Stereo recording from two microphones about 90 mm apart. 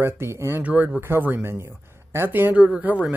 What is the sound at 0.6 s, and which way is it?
Speech, 20° right (ahead or behind).